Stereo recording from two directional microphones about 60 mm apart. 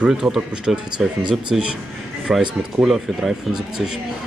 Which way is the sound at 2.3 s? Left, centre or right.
Centre.